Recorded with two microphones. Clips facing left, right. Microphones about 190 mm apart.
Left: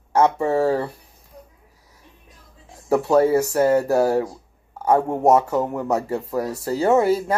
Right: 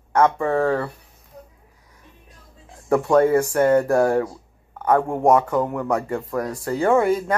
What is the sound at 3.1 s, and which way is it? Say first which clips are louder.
Speech: even; 5° left (ahead or behind).